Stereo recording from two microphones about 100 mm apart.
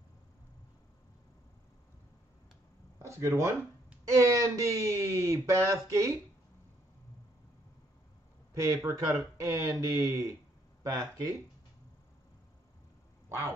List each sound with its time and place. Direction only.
3.0 s speech: 30° right (ahead or behind)
8.5 s speech: 35° right (ahead or behind)